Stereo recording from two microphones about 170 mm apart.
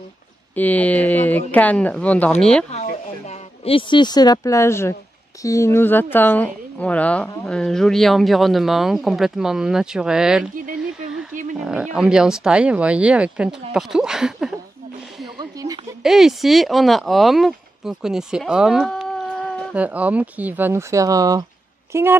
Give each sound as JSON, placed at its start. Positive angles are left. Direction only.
{"t": 0.6, "sound": "a woman's voice", "side_deg": 10}
{"t": 2.7, "sound": "a woman's voice", "side_deg": 40}
{"t": 11.5, "sound": "speech", "side_deg": -5}
{"t": 15.3, "sound": "a sound", "side_deg": -20}
{"t": 16.0, "sound": "speech", "side_deg": 0}
{"t": 19.7, "sound": "speech", "side_deg": -10}